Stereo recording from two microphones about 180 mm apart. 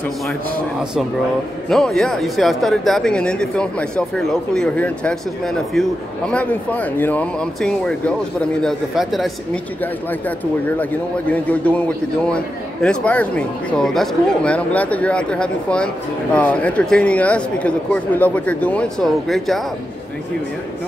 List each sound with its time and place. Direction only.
1.7 s speech: centre (ahead or behind)
10.8 s a man's voice: 10° left (ahead or behind)